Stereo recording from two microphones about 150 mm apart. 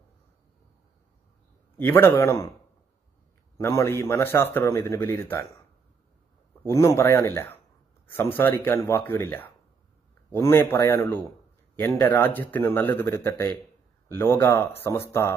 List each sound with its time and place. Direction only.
1.8 s a man's voice: 15° left (ahead or behind)
3.5 s a man's voice: 20° left (ahead or behind)
6.7 s a man's voice: 20° left (ahead or behind)